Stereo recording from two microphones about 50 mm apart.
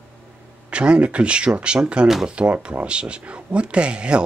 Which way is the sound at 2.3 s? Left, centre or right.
Right.